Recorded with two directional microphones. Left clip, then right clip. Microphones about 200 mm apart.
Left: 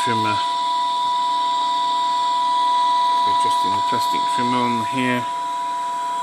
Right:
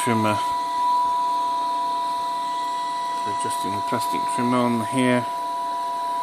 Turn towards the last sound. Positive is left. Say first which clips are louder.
# left 1 dB
turn(degrees=-10)  # may be behind; listen again after turning